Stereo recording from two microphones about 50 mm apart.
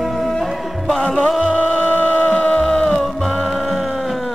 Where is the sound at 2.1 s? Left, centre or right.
Left.